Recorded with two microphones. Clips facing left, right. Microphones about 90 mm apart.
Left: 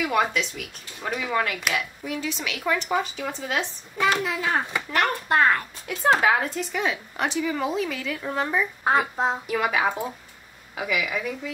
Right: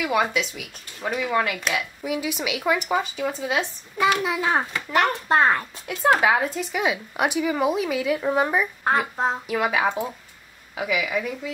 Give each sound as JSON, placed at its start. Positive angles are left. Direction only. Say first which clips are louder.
{"t": 0.0, "sound": "speech", "louder": "right 1 dB", "side_deg": -5}
{"t": 4.2, "sound": "speech", "louder": "right 3 dB", "side_deg": -20}
{"t": 5.9, "sound": "speech", "louder": "right 1 dB", "side_deg": -5}
{"t": 8.8, "sound": "speech", "louder": "left 2 dB", "side_deg": 0}